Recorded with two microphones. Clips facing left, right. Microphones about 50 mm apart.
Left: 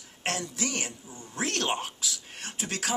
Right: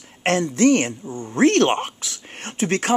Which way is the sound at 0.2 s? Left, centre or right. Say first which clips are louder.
Right 14 dB; right.